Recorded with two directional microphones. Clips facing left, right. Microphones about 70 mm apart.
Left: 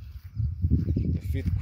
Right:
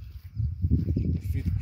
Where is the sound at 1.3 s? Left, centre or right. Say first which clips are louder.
Left 1 dB; left.